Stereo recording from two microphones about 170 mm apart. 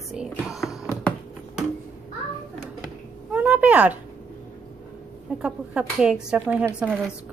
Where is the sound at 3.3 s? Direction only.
10° right (ahead or behind).